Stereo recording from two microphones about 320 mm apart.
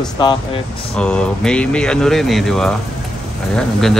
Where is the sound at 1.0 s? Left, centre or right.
Centre.